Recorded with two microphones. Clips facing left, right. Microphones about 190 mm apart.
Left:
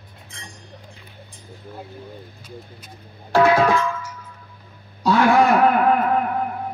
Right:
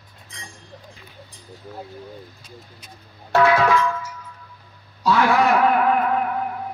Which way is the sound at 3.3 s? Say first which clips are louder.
Left 1 dB; 30° left (ahead or behind).